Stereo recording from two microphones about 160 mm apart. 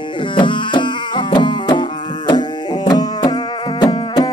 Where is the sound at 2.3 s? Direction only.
25° left (ahead or behind).